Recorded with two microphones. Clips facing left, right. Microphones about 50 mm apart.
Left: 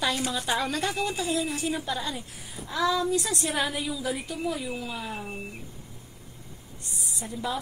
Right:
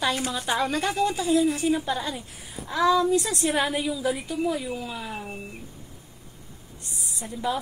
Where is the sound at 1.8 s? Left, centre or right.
Centre.